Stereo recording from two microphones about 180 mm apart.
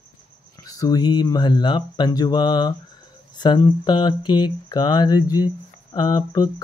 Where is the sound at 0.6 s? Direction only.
20° left (ahead or behind).